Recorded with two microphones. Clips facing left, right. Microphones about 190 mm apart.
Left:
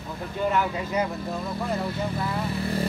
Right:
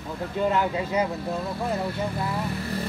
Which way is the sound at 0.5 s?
25° right (ahead or behind).